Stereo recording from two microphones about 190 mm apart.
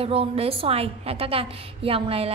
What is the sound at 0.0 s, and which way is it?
A woman's voice, 30° right (ahead or behind).